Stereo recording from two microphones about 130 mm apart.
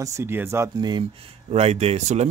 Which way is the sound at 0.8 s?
35° right (ahead or behind).